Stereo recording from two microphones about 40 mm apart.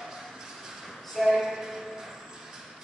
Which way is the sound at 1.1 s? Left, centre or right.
Centre.